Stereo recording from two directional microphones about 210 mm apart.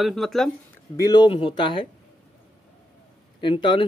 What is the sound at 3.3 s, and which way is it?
Speech, 25° left (ahead or behind).